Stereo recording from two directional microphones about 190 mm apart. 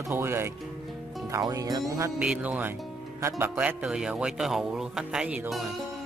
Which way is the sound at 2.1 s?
5° right (ahead or behind).